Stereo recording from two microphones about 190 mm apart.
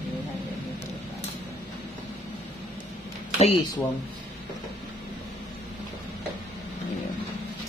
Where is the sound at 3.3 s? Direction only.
30° left (ahead or behind).